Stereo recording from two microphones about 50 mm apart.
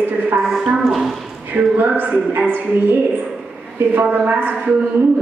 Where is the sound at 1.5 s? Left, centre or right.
Right.